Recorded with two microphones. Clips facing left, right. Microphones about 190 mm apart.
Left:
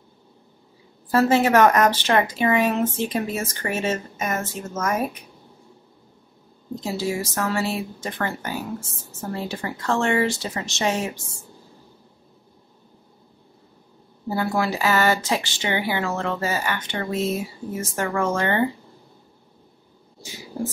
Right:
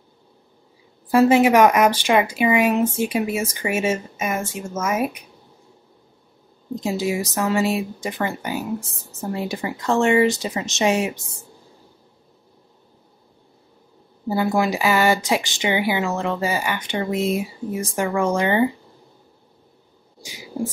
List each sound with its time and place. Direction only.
1.1 s speech: 15° right (ahead or behind)
6.7 s speech: 15° right (ahead or behind)
14.3 s speech: 15° right (ahead or behind)
20.5 s a sound: 10° right (ahead or behind)